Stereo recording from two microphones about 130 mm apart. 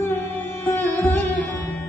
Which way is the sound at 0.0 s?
15° left (ahead or behind).